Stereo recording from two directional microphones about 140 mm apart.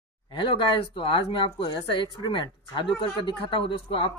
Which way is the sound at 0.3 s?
40° left (ahead or behind).